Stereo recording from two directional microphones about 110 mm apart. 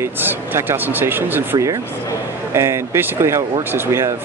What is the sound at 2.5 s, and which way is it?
Speech, 25° right (ahead or behind).